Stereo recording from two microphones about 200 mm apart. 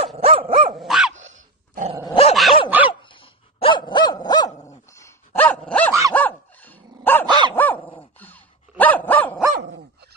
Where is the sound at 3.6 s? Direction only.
25° left (ahead or behind).